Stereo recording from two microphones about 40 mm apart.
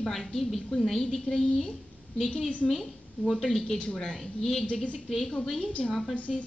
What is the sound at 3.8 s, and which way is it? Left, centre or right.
Speech, left.